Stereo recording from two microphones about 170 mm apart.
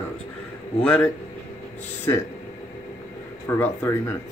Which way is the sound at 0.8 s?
5° left (ahead or behind).